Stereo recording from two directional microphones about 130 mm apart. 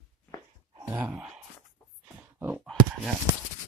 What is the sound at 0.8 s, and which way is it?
Wail, 15° right (ahead or behind).